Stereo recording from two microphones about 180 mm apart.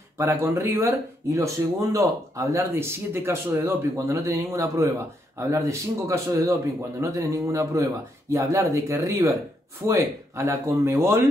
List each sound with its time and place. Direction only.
0.2 s speech: 15° right (ahead or behind)